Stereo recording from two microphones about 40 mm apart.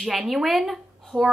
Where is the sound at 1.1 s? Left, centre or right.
Right.